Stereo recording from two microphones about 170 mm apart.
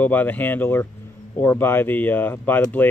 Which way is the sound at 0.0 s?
10° left (ahead or behind).